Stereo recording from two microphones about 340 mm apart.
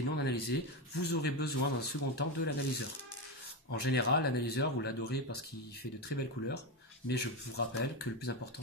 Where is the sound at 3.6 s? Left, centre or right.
Left.